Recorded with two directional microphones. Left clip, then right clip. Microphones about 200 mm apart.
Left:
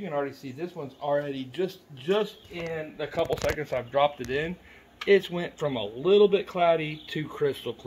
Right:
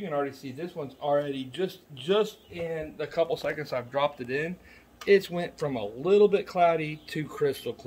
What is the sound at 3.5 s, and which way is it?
Speech, 20° left (ahead or behind).